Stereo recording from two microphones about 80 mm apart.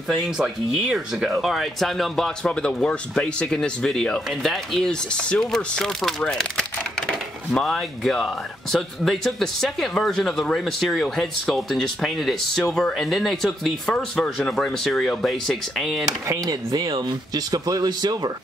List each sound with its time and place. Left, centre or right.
0.1 s speech: centre
16.3 s speech: right